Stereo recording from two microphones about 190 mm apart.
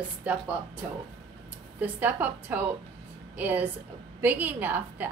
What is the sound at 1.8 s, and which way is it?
A woman's voice, 10° right (ahead or behind).